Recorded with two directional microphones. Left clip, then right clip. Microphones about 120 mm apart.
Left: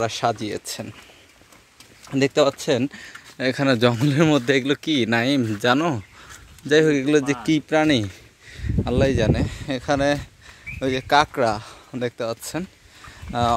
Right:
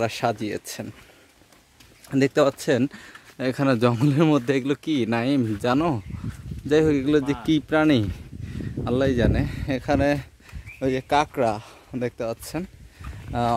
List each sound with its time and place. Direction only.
0.0 s speech: 40° right (ahead or behind)
2.0 s speech: 40° right (ahead or behind)
3.3 s speech: 25° right (ahead or behind)